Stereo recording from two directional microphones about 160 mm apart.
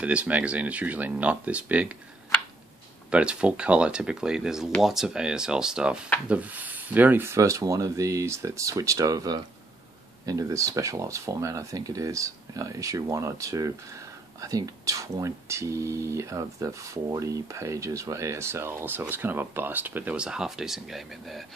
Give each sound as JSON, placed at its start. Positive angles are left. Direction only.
{"t": 0.0, "sound": "speech", "side_deg": -10}
{"t": 3.1, "sound": "speech", "side_deg": -5}